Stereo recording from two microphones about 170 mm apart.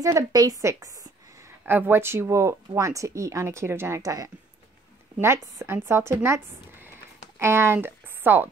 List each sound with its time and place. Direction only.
0.0 s a woman's voice: 20° right (ahead or behind)